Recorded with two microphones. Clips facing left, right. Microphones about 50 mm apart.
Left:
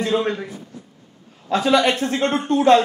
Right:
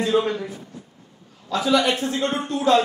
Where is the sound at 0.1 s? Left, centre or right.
Left.